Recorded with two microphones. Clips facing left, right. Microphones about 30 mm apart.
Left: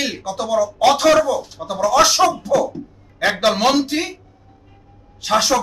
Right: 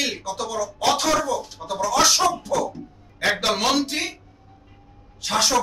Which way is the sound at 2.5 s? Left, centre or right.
Centre.